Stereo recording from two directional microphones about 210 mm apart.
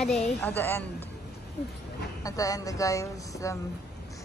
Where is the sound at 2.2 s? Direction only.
15° left (ahead or behind).